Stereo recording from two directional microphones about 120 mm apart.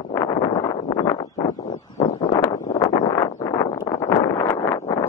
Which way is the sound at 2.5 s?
35° left (ahead or behind).